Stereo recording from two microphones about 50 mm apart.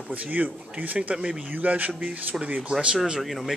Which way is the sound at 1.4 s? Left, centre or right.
Right.